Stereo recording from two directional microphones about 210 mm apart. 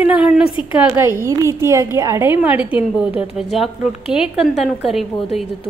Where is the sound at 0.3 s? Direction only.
25° left (ahead or behind).